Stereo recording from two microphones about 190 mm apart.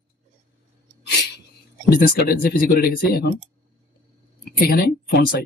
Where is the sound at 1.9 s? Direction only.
50° left (ahead or behind).